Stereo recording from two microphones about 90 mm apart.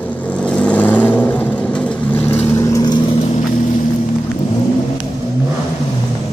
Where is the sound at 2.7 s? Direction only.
50° left (ahead or behind).